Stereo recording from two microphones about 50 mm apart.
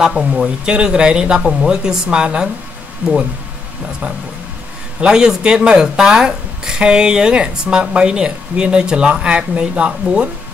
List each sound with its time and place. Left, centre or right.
0.0 s speech: centre
3.0 s speech: right
5.0 s speech: centre